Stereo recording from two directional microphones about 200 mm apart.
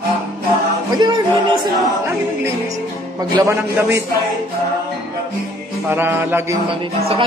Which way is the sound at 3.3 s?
15° right (ahead or behind).